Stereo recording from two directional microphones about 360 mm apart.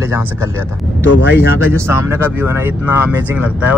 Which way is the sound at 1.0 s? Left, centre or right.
Left.